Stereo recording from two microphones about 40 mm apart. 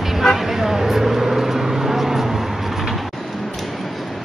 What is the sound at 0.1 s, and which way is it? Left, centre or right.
Vehicle, centre.